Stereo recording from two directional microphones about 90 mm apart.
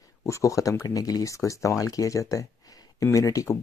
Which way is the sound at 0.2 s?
35° left (ahead or behind).